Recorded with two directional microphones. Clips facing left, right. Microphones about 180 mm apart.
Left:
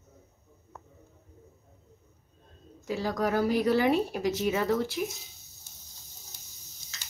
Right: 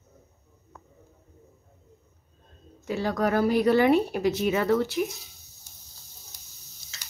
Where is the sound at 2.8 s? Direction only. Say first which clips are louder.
Right 3 dB; 60° right (ahead or behind).